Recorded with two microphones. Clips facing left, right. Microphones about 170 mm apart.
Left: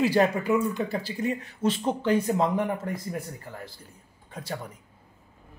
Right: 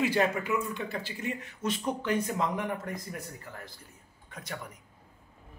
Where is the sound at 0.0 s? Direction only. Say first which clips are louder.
Left 5 dB; 35° left (ahead or behind).